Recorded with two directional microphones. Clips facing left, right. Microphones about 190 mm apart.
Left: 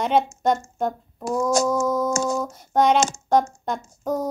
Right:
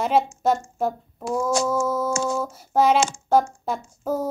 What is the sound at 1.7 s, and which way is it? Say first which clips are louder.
Humming: left 1 dB; 5° right (ahead or behind).